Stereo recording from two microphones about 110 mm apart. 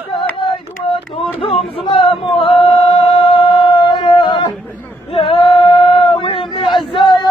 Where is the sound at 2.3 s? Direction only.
55° left (ahead or behind).